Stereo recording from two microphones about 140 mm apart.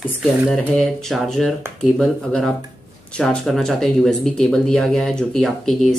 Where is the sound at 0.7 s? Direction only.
Centre (ahead or behind).